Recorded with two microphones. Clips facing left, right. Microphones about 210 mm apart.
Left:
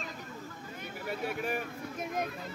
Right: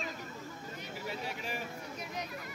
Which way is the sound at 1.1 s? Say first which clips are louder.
Left 7 dB; 55° left (ahead or behind).